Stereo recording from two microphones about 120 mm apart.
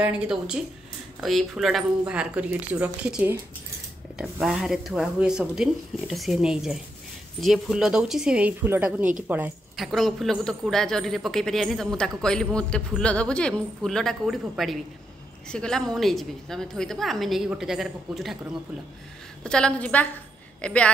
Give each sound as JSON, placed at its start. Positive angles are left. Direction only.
{"t": 0.0, "sound": "a man's voice", "side_deg": -10}
{"t": 9.8, "sound": "a man's voice", "side_deg": 0}
{"t": 19.4, "sound": "a woman's voice", "side_deg": 5}